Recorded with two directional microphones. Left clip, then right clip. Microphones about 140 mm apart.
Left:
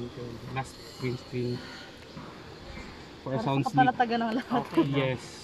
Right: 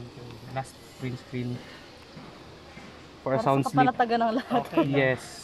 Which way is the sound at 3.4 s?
40° right (ahead or behind).